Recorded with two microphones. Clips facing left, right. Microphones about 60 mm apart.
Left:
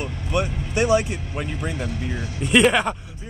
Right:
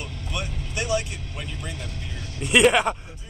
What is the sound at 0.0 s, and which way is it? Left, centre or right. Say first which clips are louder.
Vehicle: left 8 dB; left.